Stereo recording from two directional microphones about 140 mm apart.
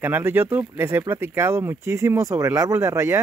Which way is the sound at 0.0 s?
15° right (ahead or behind).